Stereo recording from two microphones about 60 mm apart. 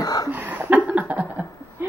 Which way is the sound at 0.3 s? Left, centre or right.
Right.